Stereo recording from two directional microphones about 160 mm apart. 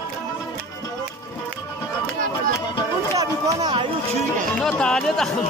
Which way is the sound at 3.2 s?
20° right (ahead or behind).